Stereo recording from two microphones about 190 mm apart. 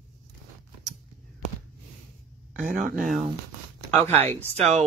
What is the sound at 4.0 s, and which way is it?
Speech, 35° right (ahead or behind).